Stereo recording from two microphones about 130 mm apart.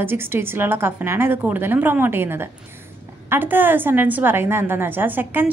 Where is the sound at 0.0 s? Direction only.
15° right (ahead or behind).